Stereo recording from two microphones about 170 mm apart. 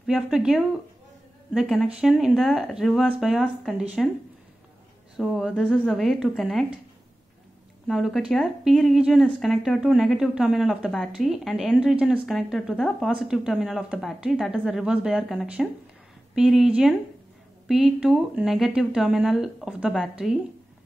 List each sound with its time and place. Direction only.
0.0 s speech: 5° right (ahead or behind)
5.1 s speech: centre (ahead or behind)
7.8 s speech: centre (ahead or behind)